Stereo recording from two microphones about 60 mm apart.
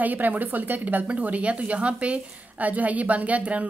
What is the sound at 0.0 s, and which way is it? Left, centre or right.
A woman's voice, right.